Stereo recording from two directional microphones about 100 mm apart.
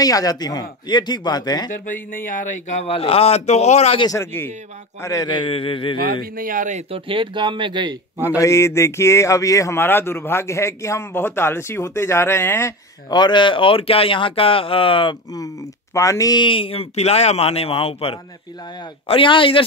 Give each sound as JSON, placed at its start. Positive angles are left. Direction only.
{"t": 0.0, "sound": "speech", "side_deg": 40}
{"t": 2.8, "sound": "speech", "side_deg": 75}
{"t": 4.1, "sound": "speech", "side_deg": 25}
{"t": 5.3, "sound": "speech", "side_deg": 60}
{"t": 6.9, "sound": "speech", "side_deg": -60}
{"t": 8.4, "sound": "speech", "side_deg": 30}
{"t": 13.1, "sound": "speech", "side_deg": 50}
{"t": 15.3, "sound": "speech", "side_deg": 35}
{"t": 16.3, "sound": "speech", "side_deg": 60}